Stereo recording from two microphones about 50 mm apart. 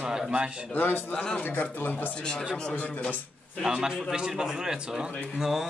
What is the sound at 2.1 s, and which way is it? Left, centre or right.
Speech, centre.